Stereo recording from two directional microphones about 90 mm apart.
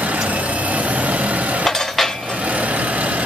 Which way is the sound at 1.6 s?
5° left (ahead or behind).